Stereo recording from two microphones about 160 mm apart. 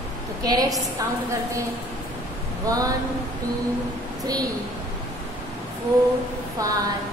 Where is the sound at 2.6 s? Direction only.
20° right (ahead or behind).